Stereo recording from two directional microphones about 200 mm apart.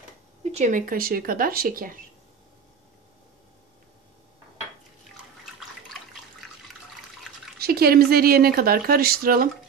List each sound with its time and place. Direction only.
0.4 s speech: 35° right (ahead or behind)
7.5 s speech: 50° right (ahead or behind)